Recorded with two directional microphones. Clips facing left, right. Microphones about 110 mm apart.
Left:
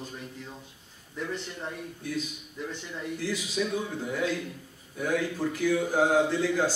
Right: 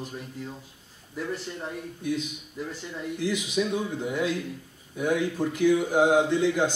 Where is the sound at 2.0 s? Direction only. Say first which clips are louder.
Right 5 dB; 20° right (ahead or behind).